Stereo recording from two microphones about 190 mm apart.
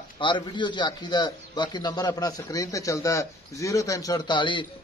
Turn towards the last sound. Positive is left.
turn(degrees=25)  # may be behind; listen again after turning